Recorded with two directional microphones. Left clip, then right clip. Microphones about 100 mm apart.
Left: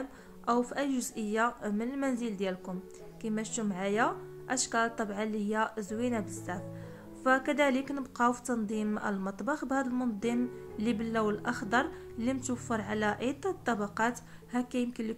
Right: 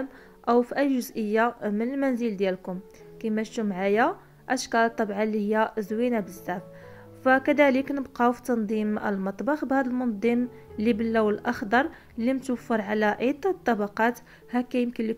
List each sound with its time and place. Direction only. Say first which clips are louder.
0.5 s a woman's voice: right 8 dB; 30° right (ahead or behind)